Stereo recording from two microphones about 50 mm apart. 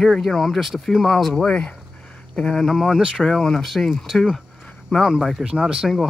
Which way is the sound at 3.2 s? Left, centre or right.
Centre.